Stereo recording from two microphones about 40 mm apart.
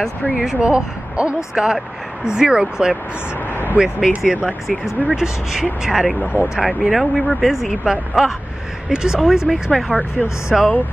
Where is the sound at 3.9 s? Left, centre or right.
Centre.